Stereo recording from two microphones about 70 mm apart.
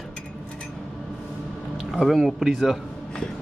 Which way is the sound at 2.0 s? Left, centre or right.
Centre.